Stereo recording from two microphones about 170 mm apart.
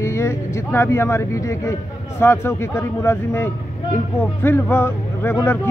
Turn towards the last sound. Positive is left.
turn(degrees=15)  # may be behind; listen again after turning